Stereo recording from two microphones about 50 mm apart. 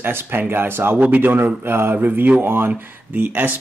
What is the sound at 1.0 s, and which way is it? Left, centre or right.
Speech, right.